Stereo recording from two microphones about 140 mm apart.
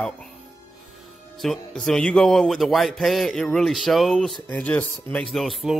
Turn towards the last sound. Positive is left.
turn(degrees=0)  # may be behind; listen again after turning